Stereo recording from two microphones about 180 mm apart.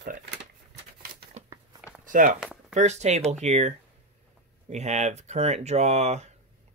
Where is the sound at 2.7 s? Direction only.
40° right (ahead or behind).